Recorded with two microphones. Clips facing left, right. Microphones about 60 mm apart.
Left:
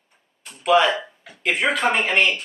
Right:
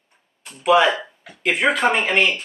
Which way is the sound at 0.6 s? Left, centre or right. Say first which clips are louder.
Right 2 dB; centre.